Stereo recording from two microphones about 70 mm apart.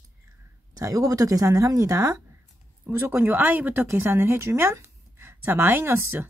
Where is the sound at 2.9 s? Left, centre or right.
Right.